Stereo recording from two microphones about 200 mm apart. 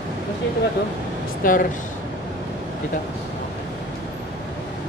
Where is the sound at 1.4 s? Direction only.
45° left (ahead or behind).